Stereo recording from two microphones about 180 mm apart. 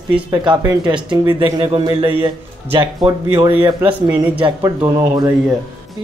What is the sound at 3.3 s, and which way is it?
Speech, 15° right (ahead or behind).